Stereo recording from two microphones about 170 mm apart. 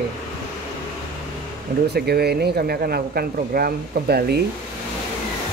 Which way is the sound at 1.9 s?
70° right (ahead or behind).